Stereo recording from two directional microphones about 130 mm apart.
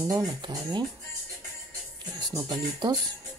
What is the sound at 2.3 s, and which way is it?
Speech, 30° right (ahead or behind).